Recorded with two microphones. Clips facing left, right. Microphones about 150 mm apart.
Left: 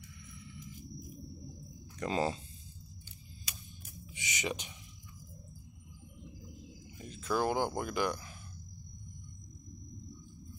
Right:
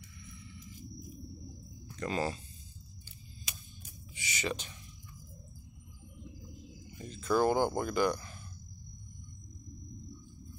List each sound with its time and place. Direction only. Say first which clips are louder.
2.0 s speech: left 1 dB; 20° left (ahead or behind)
4.1 s speech: right 1 dB; 20° left (ahead or behind)
7.0 s speech: right 4 dB; 5° left (ahead or behind)